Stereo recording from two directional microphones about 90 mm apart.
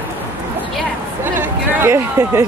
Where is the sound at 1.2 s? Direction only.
25° right (ahead or behind).